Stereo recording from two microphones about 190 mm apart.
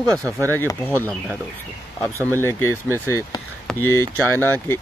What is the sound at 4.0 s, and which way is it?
Speech, 15° right (ahead or behind).